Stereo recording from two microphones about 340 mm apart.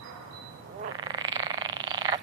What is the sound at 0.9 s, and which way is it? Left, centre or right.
Frog, centre.